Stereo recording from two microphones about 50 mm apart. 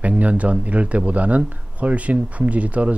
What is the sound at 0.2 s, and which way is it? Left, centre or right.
Speech, right.